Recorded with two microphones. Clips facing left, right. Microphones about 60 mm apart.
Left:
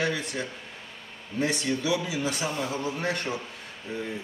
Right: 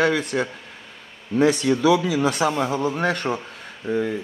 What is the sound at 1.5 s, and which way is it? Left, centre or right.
Speech, right.